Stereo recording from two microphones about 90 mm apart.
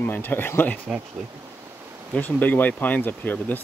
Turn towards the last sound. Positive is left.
turn(degrees=20)  # may be behind; listen again after turning